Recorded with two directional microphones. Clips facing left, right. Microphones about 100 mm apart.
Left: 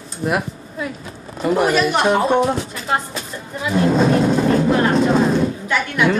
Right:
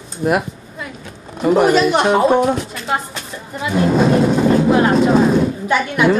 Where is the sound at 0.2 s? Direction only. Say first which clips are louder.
Right 4 dB; 5° right (ahead or behind).